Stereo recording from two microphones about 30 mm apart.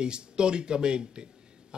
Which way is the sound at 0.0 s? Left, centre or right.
Right.